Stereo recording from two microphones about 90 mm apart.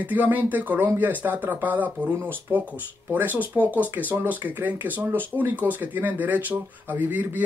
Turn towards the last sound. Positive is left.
turn(degrees=-20)  # may be behind; listen again after turning